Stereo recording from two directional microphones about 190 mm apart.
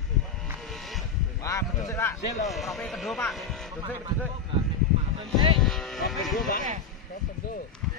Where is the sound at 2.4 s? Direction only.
Centre (ahead or behind).